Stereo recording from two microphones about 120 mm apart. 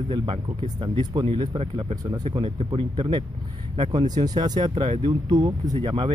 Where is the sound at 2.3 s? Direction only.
50° right (ahead or behind).